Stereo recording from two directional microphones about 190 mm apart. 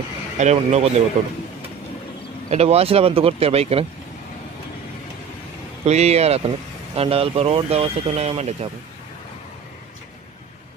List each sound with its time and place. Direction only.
0.4 s speech: 35° right (ahead or behind)
2.5 s speech: 35° right (ahead or behind)
5.9 s speech: 35° right (ahead or behind)